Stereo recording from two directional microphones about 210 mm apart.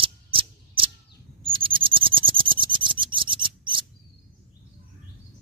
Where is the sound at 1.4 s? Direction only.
25° right (ahead or behind).